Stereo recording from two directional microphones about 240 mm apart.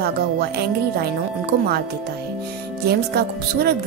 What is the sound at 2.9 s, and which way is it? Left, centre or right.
Speech, right.